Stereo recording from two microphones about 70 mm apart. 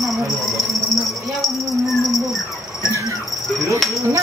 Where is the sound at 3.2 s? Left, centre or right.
Centre.